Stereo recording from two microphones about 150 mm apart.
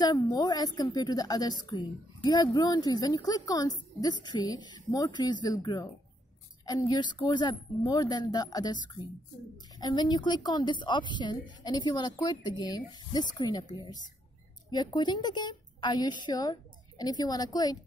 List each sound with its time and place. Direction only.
0.0 s a woman's voice: 25° left (ahead or behind)